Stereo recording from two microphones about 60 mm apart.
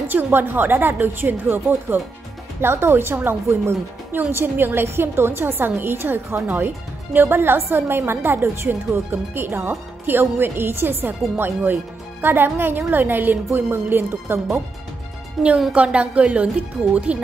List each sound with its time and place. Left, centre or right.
0.1 s a woman's voice: right
15.4 s a woman's voice: centre
15.7 s speech: centre